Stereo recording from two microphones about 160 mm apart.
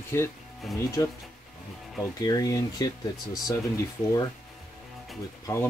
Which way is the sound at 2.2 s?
25° left (ahead or behind).